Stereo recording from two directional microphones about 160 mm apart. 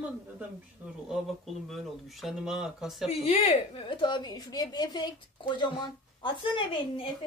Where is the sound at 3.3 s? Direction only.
35° left (ahead or behind).